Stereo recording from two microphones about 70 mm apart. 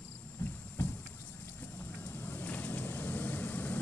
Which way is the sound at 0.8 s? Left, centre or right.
Left.